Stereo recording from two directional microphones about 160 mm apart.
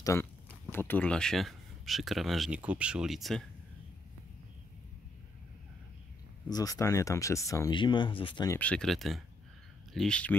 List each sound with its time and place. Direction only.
0.0 s speech: 15° left (ahead or behind); by 3.4 s centre (ahead or behind)
6.5 s speech: 20° left (ahead or behind)
8.5 s speech: 10° left (ahead or behind)